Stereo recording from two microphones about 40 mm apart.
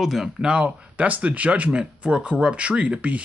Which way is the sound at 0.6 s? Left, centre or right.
Right.